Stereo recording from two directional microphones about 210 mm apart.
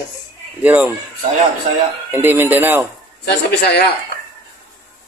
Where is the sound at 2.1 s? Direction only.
10° right (ahead or behind).